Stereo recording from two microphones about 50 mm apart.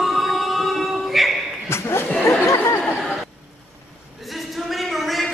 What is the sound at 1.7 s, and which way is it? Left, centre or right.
Chuckle, left.